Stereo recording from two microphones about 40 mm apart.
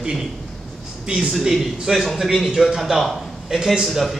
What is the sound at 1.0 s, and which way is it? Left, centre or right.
Speech, right.